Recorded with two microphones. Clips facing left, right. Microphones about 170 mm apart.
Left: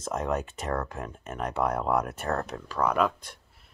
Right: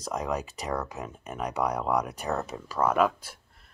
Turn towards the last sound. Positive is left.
turn(degrees=-5)  # may be behind; listen again after turning